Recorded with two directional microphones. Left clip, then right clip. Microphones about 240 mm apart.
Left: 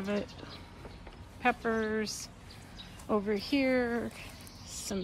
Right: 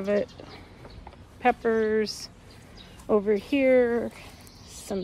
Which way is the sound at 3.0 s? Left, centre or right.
Right.